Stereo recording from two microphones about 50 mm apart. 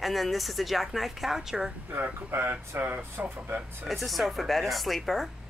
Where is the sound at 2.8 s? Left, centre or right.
Right.